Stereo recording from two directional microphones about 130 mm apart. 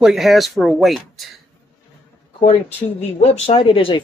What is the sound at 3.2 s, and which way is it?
Speech, 50° left (ahead or behind).